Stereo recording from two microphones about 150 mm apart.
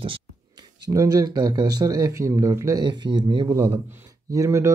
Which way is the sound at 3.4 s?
20° right (ahead or behind).